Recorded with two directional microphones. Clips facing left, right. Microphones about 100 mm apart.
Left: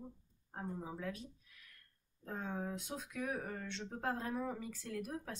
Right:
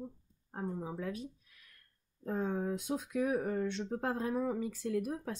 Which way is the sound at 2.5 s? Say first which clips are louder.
Right 7 dB; 10° right (ahead or behind).